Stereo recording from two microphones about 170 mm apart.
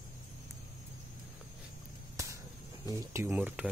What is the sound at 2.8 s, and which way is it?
Speech, 15° right (ahead or behind).